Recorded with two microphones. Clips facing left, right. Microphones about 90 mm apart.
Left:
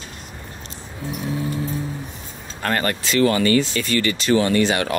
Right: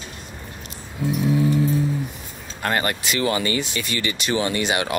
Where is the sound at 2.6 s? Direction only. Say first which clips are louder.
Left 1 dB; 15° right (ahead or behind).